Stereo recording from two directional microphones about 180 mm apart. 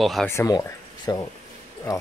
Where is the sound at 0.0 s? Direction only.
Centre (ahead or behind).